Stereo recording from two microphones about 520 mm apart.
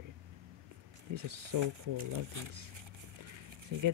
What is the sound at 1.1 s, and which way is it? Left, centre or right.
Speech, right.